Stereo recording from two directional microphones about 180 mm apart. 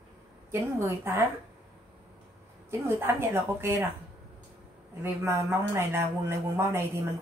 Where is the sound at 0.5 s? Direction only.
15° right (ahead or behind).